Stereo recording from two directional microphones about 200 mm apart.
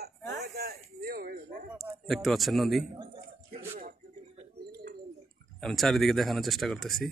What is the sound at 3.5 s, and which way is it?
Music, 40° right (ahead or behind).